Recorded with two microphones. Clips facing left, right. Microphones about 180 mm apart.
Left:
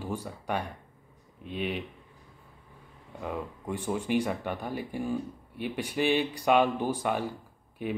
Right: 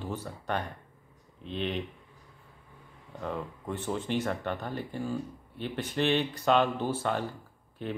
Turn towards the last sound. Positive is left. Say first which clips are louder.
# left 3 dB
turn(degrees=10)  # may be behind; listen again after turning